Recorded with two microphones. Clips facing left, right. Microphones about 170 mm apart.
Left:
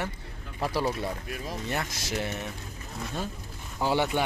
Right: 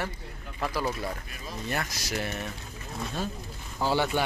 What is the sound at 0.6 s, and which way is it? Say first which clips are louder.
Speech: left 2 dB; 30° left (ahead or behind).